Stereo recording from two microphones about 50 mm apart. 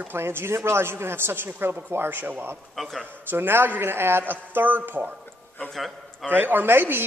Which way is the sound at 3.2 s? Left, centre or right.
Right.